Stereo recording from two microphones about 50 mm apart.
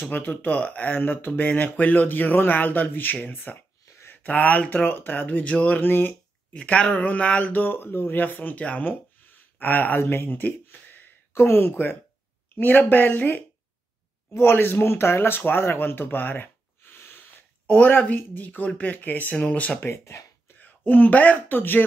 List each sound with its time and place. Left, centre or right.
0.2 s speech: left
5.8 s speech: left
6.5 s speech: left
7.6 s speech: left
19.8 s speech: left
20.5 s speech: left